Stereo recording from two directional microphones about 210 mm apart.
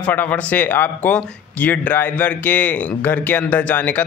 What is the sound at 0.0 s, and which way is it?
Speech, 5° left (ahead or behind).